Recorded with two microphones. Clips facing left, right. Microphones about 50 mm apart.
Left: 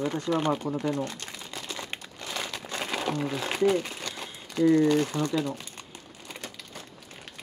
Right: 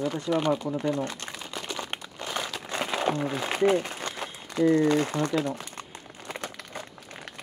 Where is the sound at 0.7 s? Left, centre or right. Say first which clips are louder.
Right 1 dB; right.